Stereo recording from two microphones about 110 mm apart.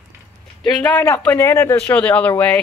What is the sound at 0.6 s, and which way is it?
Speech, 15° left (ahead or behind).